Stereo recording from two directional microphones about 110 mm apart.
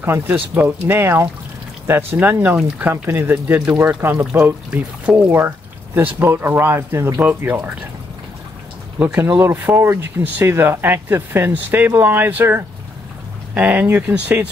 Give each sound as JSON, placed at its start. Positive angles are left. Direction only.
{"t": 0.0, "sound": "speech", "side_deg": -20}
{"t": 9.0, "sound": "speech", "side_deg": -20}